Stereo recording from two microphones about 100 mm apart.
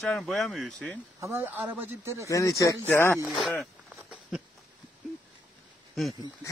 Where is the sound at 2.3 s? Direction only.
30° left (ahead or behind).